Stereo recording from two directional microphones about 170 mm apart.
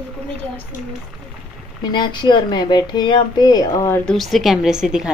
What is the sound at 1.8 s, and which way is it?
Speech, 25° left (ahead or behind).